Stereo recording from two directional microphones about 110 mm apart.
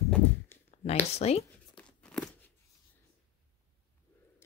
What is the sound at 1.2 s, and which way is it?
Speech, 75° left (ahead or behind).